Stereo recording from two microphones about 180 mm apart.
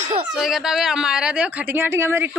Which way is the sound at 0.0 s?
40° right (ahead or behind).